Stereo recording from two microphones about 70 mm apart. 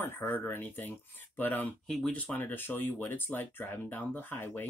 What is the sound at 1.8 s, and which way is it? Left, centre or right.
Speech, centre.